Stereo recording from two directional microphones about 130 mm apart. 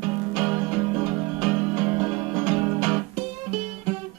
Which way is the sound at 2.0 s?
40° right (ahead or behind).